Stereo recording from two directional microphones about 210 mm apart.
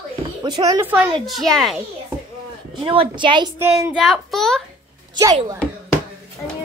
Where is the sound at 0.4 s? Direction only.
20° right (ahead or behind); by 1.8 s centre (ahead or behind).